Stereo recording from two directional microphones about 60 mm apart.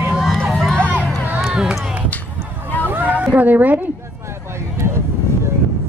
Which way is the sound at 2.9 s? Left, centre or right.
Right.